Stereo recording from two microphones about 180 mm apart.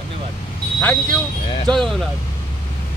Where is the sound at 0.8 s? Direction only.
5° left (ahead or behind).